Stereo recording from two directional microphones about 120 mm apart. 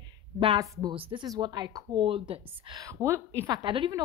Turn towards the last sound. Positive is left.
turn(degrees=-40)  # may be behind; listen again after turning